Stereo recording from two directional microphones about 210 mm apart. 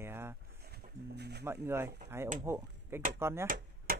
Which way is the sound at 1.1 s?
50° right (ahead or behind).